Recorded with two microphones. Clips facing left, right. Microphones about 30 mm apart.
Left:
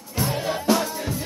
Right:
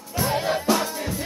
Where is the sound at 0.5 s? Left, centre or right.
Centre.